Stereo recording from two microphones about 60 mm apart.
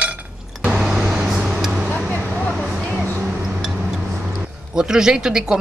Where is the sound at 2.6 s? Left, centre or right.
Centre.